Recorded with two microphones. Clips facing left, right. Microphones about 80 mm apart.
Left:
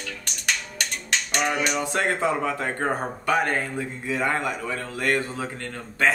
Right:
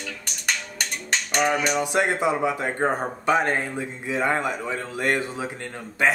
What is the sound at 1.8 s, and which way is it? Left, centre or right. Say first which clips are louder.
Speech: right 2 dB; centre.